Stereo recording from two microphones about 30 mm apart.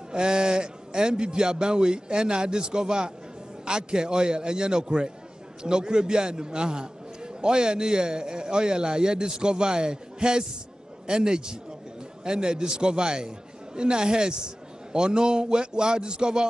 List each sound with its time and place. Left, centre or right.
0.1 s a man's voice: right